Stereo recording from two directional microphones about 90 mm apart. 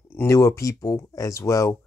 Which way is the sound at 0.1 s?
30° left (ahead or behind).